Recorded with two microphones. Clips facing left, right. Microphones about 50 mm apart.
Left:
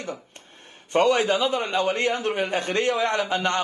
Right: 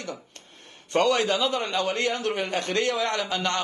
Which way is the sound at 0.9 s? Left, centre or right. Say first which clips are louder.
Left 2 dB; centre.